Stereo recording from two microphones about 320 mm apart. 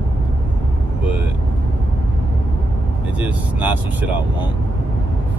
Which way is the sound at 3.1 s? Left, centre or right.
Centre.